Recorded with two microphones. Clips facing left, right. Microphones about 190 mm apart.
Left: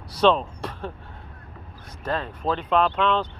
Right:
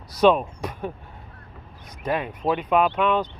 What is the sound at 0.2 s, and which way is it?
Speech, 10° right (ahead or behind).